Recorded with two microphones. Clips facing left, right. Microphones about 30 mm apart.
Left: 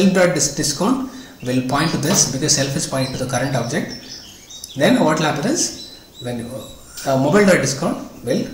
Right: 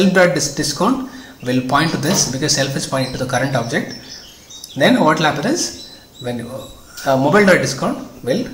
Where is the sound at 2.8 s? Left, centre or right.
Centre.